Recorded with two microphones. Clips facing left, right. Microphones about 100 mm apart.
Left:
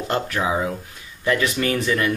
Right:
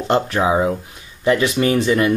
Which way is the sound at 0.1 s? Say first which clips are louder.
Right 6 dB; 25° right (ahead or behind).